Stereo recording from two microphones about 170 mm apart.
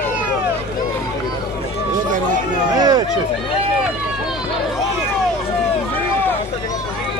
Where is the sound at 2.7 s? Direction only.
25° right (ahead or behind).